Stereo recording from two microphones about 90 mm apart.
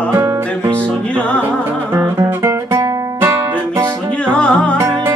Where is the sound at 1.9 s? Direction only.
35° right (ahead or behind).